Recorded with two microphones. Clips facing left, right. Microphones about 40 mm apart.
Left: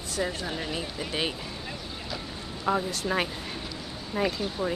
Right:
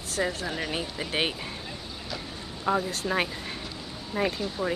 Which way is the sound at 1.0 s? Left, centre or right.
Right.